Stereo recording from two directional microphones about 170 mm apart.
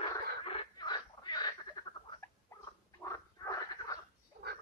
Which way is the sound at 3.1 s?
20° left (ahead or behind).